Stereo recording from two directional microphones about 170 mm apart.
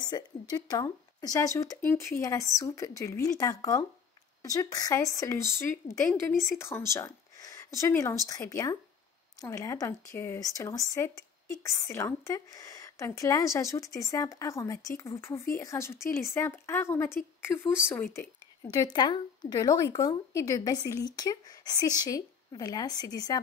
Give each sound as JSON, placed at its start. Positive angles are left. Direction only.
{"t": 0.0, "sound": "speech", "side_deg": 25}